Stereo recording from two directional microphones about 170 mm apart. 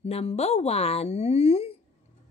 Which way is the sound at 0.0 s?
35° left (ahead or behind).